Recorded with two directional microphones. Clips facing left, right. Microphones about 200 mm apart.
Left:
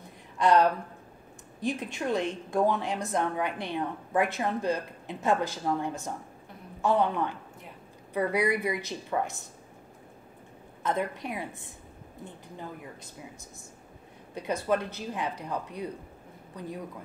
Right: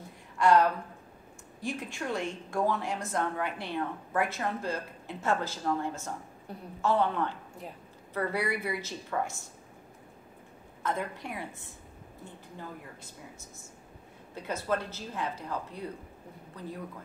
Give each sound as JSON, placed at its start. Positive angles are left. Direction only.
{"t": 0.4, "sound": "a woman's voice", "side_deg": 20}
{"t": 10.8, "sound": "a woman's voice", "side_deg": 20}
{"t": 14.3, "sound": "a woman's voice", "side_deg": 15}